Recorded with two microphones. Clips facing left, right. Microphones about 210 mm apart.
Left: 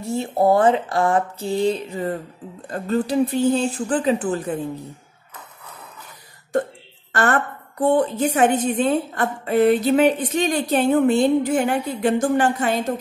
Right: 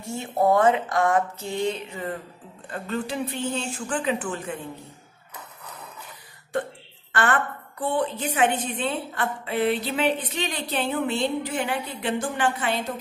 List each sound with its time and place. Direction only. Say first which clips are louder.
0.0 s speech: left 4 dB; 35° left (ahead or behind)
7.1 s a woman's voice: left 4 dB; 40° left (ahead or behind)